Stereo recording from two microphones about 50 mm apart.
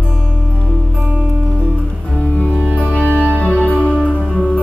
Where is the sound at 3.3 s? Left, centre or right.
Left.